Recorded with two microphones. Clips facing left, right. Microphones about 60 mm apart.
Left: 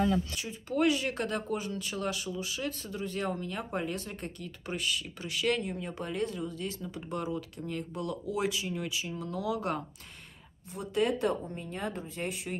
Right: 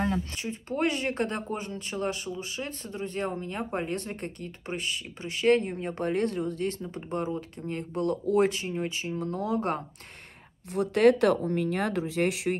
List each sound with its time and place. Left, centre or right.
0.0 s speech: right
6.9 s speech: right
7.9 s speech: right
10.7 s speech: right